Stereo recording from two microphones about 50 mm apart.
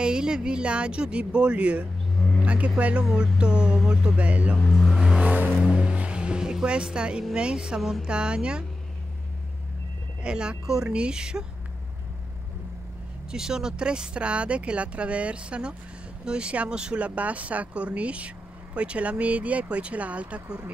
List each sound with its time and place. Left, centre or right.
0.0 s speech: centre
4.2 s speech: right
4.7 s speech: centre
5.2 s vehicle: right
5.8 s vehicle: right
7.3 s speech: centre
7.8 s speech: centre
8.1 s speech: centre
10.2 s speech: centre
13.3 s speech: centre